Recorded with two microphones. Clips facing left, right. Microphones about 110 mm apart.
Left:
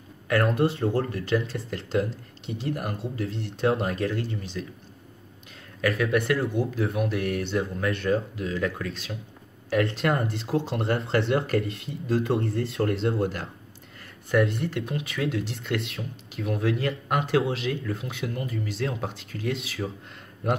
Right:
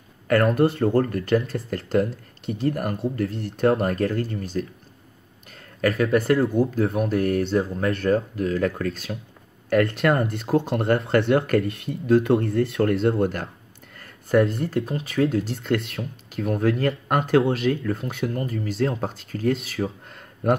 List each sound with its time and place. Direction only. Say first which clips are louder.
0.3 s speech: right 4 dB; 50° right (ahead or behind)
5.8 s speech: right 4 dB; 40° right (ahead or behind)